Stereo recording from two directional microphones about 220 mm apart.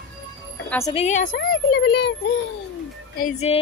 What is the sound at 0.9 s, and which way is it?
Music, 30° left (ahead or behind).